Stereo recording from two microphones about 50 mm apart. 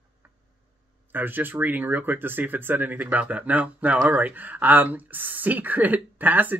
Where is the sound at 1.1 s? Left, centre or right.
Right.